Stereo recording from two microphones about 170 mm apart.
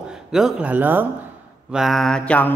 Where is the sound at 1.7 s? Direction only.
Centre (ahead or behind).